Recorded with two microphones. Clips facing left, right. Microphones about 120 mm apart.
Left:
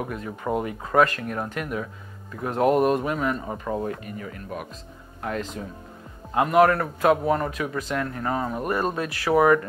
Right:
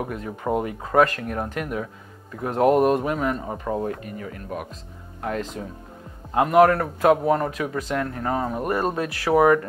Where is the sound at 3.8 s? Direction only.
35° right (ahead or behind).